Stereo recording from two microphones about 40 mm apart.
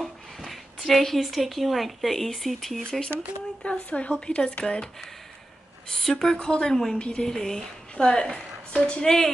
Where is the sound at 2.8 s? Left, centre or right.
Left.